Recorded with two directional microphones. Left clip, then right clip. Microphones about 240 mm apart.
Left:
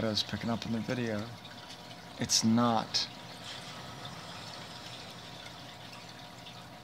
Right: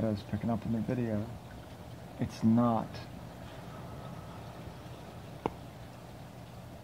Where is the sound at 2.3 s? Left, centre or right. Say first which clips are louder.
Left 2 dB; left.